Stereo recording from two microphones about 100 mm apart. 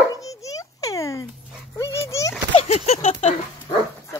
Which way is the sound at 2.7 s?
90° left.